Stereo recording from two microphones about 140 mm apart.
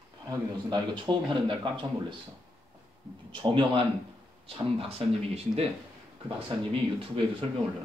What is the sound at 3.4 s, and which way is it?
Speech, 35° right (ahead or behind).